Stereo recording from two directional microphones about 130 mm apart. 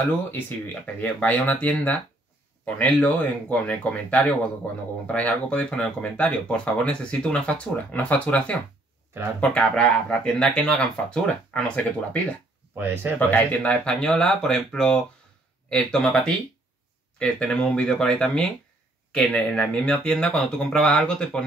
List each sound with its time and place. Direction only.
1.0 s speech: 10° left (ahead or behind)
12.7 s speech: 15° right (ahead or behind)
13.3 s speech: 10° left (ahead or behind)